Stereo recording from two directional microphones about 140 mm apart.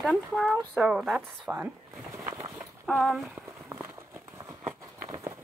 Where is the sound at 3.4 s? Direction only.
20° right (ahead or behind).